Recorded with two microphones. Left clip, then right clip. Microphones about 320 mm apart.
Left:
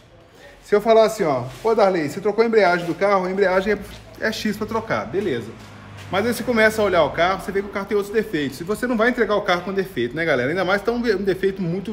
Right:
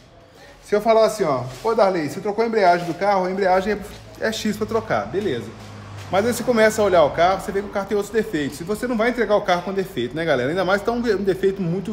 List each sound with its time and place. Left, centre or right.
0.7 s speech: centre